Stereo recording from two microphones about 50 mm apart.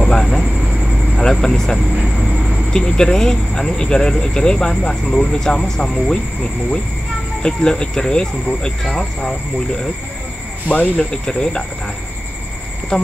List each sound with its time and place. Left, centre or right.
0.0 s speech: centre
2.0 s speech: centre
2.7 s speech: centre
7.4 s speech: centre
11.0 s speech: centre
12.9 s speech: centre